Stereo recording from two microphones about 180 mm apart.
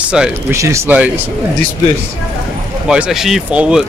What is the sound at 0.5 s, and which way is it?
Speech, 15° right (ahead or behind).